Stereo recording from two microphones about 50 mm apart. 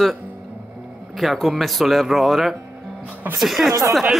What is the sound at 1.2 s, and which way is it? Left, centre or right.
Speech, centre.